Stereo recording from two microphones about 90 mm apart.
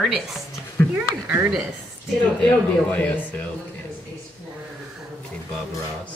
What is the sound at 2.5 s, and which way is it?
Speech, 15° left (ahead or behind).